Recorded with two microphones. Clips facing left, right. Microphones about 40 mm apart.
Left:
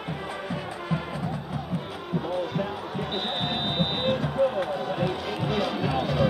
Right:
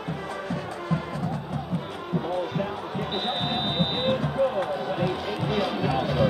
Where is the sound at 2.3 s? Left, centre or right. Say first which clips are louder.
Even; centre.